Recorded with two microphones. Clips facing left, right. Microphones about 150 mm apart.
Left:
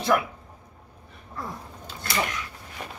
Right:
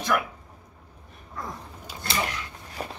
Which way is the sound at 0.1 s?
35° left (ahead or behind).